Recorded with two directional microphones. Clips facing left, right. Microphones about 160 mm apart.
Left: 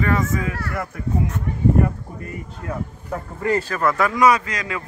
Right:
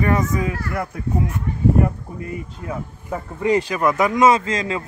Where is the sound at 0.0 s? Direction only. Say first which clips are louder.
Right 2 dB; 20° right (ahead or behind).